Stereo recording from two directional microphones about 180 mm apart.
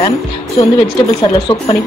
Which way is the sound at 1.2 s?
30° left (ahead or behind).